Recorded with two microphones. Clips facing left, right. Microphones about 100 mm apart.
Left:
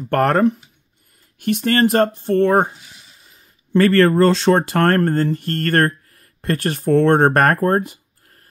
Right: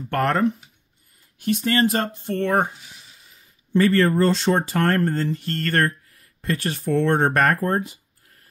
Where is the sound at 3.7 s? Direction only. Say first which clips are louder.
Left 4 dB; 70° left (ahead or behind).